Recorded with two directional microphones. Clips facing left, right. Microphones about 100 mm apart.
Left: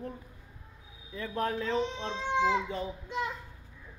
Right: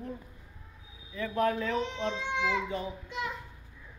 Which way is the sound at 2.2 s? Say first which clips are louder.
Left 7 dB; 40° left (ahead or behind).